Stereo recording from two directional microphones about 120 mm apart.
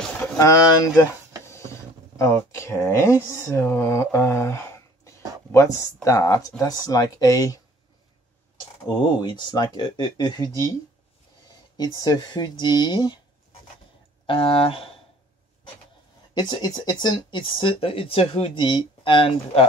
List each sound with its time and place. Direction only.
0.4 s speech: 30° left (ahead or behind)
8.8 s speech: 40° left (ahead or behind)
11.7 s speech: 30° left (ahead or behind)
14.2 s speech: 50° left (ahead or behind)
16.3 s speech: 35° left (ahead or behind)